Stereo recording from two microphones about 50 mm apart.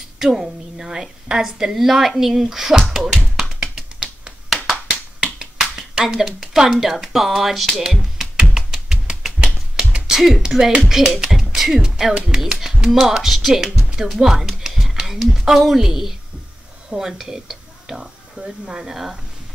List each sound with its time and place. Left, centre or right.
0.2 s a woman's voice: centre
3.0 s tap: centre
5.2 s finger snapping: centre
6.0 s speech: centre
8.5 s a sound: centre
10.2 s a woman's voice: centre
14.7 s a sound: centre
15.2 s a woman's voice: centre